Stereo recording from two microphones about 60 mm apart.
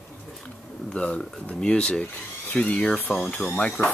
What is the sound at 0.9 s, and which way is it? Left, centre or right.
Speech, centre.